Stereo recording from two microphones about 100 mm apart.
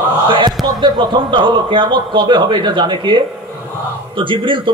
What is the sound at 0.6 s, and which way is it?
A man's voice, 50° right (ahead or behind).